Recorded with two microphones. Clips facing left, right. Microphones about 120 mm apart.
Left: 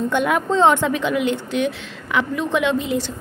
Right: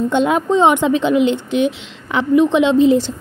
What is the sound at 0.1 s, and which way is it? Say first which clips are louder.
A woman's voice: right 4 dB; 25° right (ahead or behind).